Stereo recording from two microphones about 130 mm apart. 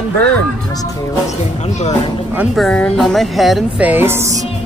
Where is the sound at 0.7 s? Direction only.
25° left (ahead or behind).